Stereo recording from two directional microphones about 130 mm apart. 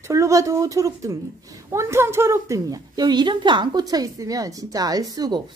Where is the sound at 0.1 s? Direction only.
25° right (ahead or behind).